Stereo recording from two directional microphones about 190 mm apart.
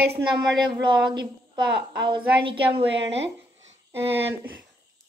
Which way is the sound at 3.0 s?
70° right (ahead or behind).